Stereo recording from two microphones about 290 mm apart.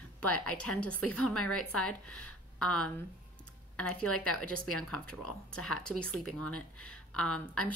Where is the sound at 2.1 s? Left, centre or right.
Left.